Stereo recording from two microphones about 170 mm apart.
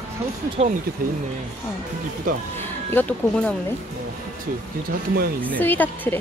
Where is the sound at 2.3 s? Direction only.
50° right (ahead or behind).